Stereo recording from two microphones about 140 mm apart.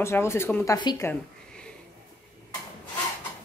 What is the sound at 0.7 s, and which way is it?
Speech, 30° left (ahead or behind).